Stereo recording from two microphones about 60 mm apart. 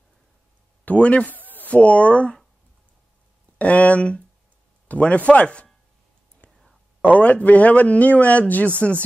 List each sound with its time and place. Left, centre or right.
0.8 s speech: left
3.5 s a man's voice: left
7.0 s a man's voice: left